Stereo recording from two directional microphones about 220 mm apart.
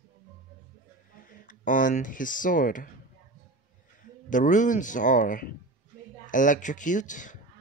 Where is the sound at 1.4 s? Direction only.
40° left (ahead or behind).